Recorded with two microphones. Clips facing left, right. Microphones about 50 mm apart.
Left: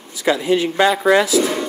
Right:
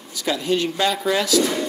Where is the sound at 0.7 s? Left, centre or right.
Left.